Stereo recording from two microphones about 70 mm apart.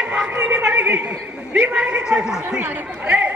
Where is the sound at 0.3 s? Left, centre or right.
Right.